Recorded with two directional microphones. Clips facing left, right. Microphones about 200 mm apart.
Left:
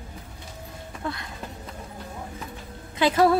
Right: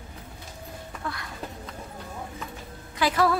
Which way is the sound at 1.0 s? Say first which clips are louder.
Left 4 dB; 25° left (ahead or behind).